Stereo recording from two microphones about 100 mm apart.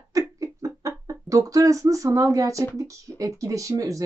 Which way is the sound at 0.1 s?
35° right (ahead or behind).